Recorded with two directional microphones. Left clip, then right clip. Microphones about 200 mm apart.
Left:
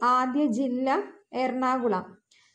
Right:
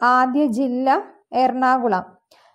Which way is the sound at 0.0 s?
40° right (ahead or behind).